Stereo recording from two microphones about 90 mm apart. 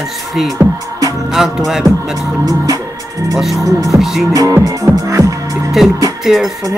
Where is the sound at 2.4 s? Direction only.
40° right (ahead or behind).